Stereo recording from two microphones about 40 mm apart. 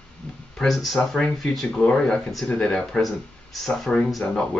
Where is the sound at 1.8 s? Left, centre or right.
Left.